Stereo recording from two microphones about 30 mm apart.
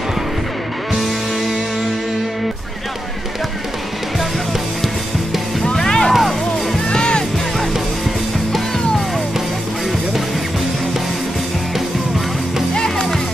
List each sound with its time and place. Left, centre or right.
5.8 s music: left
12.7 s music: left